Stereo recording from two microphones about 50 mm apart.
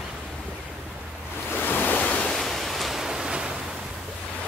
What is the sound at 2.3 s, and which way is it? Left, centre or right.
Pink noise, centre.